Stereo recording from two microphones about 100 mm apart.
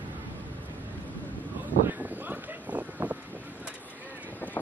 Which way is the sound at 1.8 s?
15° right (ahead or behind).